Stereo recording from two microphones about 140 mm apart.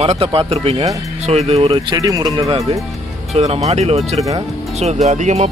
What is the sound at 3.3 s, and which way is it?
Speech, 50° right (ahead or behind).